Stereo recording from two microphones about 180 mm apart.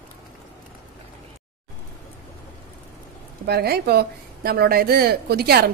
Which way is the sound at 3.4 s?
60° right (ahead or behind).